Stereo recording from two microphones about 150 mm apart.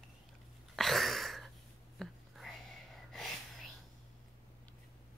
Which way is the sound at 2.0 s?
Centre (ahead or behind).